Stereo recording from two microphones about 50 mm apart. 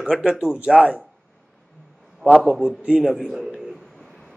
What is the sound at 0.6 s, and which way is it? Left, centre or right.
Speech, right.